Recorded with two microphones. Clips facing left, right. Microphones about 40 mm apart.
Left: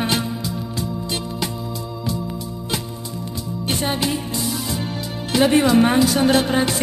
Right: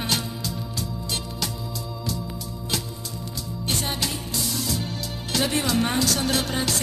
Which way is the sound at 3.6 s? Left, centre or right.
Left.